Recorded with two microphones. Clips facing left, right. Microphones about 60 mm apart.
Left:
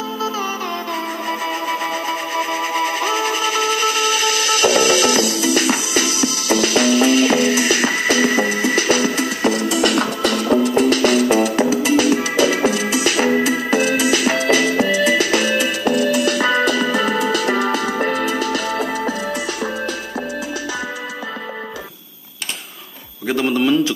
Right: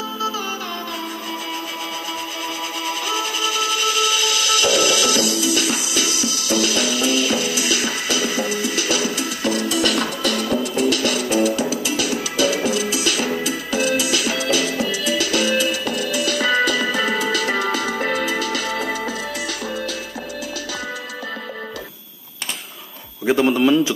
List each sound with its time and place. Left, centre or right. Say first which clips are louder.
2.3 s music: left 7 dB; left
15.8 s music: left 6 dB; left
23.2 s a man's voice: right 2 dB; centre